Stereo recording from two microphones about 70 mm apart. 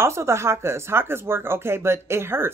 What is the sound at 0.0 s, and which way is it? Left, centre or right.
Speech, right.